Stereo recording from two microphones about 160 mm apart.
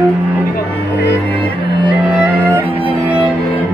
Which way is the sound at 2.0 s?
10° right (ahead or behind).